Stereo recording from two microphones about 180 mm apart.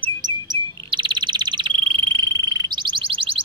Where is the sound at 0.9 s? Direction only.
25° right (ahead or behind).